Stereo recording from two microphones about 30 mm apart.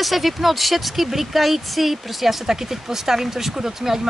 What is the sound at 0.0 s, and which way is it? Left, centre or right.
Speech, centre.